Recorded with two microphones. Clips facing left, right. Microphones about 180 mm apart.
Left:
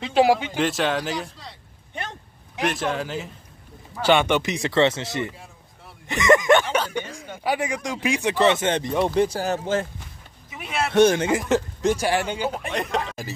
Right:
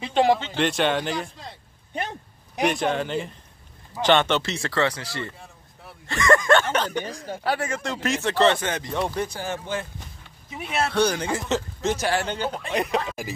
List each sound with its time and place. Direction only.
0.0 s a man's voice: 5° left (ahead or behind)
2.6 s a man's voice: centre (ahead or behind); by 8.6 s 15° left (ahead or behind)
8.6 s speech: 25° left (ahead or behind)
9.3 s speech: 40° left (ahead or behind)
10.5 s speech: 25° right (ahead or behind)
10.9 s speech: 25° left (ahead or behind); by 13.3 s centre (ahead or behind)